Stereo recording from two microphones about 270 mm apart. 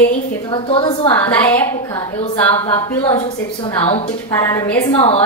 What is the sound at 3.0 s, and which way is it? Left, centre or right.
A woman's voice, centre.